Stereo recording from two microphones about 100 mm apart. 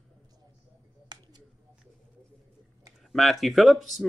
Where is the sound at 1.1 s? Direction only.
45° right (ahead or behind).